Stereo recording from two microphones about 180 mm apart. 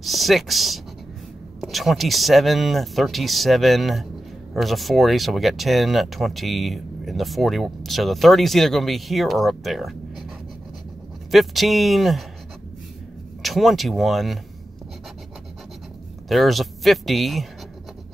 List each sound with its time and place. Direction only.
0.0 s speech: centre (ahead or behind)
11.3 s speech: centre (ahead or behind)
13.4 s speech: centre (ahead or behind)
16.3 s speech: centre (ahead or behind)